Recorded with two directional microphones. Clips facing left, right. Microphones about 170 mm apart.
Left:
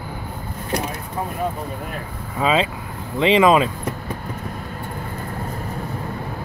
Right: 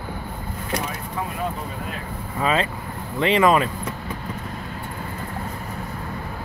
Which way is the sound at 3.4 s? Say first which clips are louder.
Left 2 dB; 20° left (ahead or behind).